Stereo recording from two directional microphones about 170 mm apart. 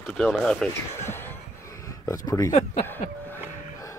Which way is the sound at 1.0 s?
15° left (ahead or behind).